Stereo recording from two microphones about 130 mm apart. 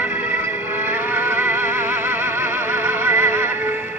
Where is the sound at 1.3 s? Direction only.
15° right (ahead or behind).